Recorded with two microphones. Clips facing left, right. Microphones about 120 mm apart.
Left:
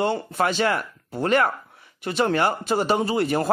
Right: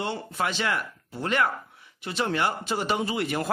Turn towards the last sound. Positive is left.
turn(degrees=40)  # may be behind; listen again after turning